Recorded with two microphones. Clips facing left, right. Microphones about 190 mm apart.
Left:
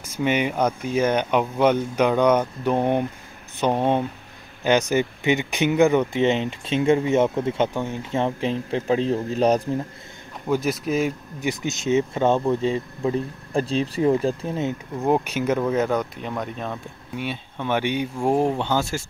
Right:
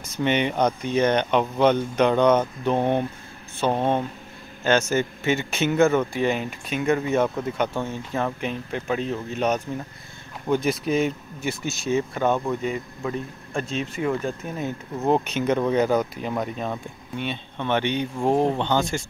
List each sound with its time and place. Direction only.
0.0 s speech: 10° left (ahead or behind); by 7.7 s 25° left (ahead or behind)
7.7 s speech: 15° left (ahead or behind)
8.2 s speech: 30° left (ahead or behind)
10.4 s speech: centre (ahead or behind)
11.4 s speech: 20° left (ahead or behind)
15.0 s speech: 10° left (ahead or behind)